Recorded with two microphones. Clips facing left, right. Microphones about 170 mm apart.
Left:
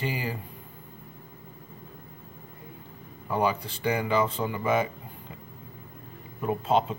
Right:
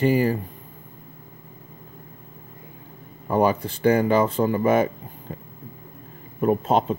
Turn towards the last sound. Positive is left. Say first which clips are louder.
# right 5 dB
turn(degrees=-45)  # may be behind; listen again after turning